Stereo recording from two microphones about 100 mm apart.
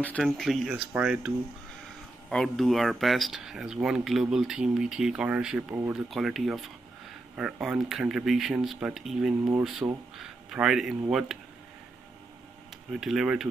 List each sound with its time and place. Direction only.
0.2 s speech: centre (ahead or behind)
2.2 s speech: centre (ahead or behind)
13.0 s speech: 5° right (ahead or behind)